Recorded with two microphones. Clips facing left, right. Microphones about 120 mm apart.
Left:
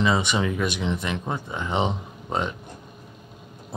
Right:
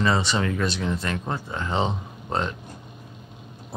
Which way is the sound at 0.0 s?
15° left (ahead or behind).